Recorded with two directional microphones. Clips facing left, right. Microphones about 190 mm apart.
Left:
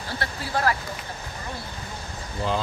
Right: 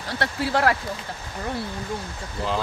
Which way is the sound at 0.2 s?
75° right (ahead or behind).